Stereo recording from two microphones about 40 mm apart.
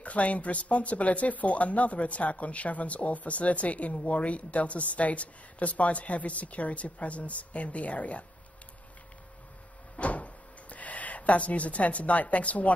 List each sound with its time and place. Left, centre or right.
0.0 s speech: left
9.9 s drawer open or close: left